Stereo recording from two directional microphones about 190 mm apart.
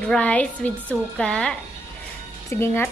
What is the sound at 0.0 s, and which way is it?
A woman's voice, 5° left (ahead or behind).